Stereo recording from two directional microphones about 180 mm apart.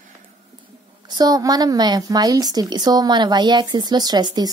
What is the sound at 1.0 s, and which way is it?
A woman's voice, 20° right (ahead or behind).